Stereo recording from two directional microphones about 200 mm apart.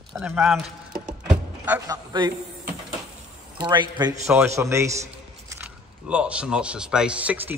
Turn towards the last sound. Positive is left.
turn(degrees=-10)  # may be behind; listen again after turning